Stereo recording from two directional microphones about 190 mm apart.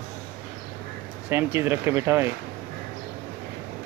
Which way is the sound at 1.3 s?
10° right (ahead or behind).